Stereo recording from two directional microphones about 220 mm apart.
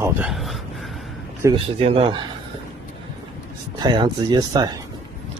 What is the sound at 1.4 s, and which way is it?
Speech, 25° right (ahead or behind).